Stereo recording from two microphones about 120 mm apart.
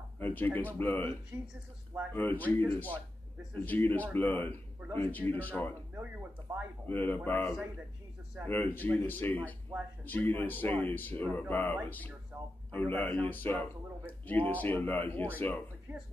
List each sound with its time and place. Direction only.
0.2 s speech: 15° left (ahead or behind)
1.3 s speech: 20° right (ahead or behind)
2.1 s speech: 15° left (ahead or behind)
6.9 s speech: 15° left (ahead or behind)
12.3 s a man's voice: 20° right (ahead or behind)
12.7 s speech: 15° left (ahead or behind)
15.9 s speech: 15° right (ahead or behind)